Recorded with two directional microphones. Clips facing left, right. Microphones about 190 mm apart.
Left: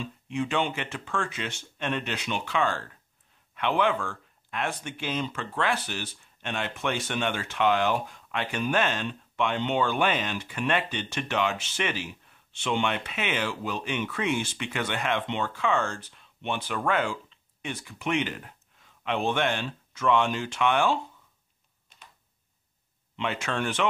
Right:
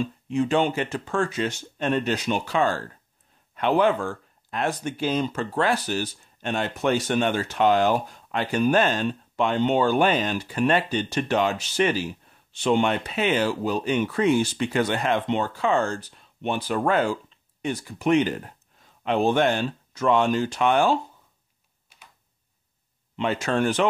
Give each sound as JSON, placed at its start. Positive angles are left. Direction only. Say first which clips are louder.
{"t": 0.0, "sound": "speech", "louder": "right 6 dB", "side_deg": -40}
{"t": 23.1, "sound": "speech", "louder": "right 6 dB", "side_deg": -40}